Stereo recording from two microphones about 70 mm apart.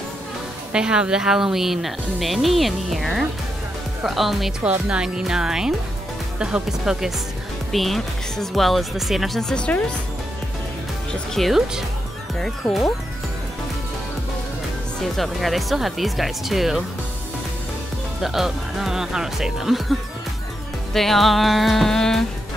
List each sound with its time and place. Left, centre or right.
0.7 s speech: centre
11.3 s speech: centre
12.6 s speech: centre
15.0 s speech: centre
18.2 s speech: centre